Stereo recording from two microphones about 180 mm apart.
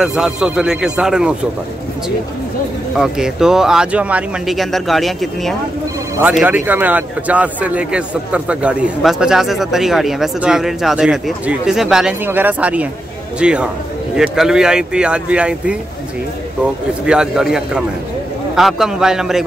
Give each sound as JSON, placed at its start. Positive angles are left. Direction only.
{"t": 0.0, "sound": "a man's voice", "side_deg": -5}
{"t": 3.0, "sound": "a man's voice", "side_deg": -5}
{"t": 17.0, "sound": "a man's voice", "side_deg": -5}